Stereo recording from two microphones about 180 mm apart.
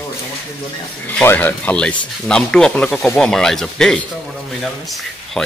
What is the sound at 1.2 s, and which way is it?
Speech, 10° left (ahead or behind).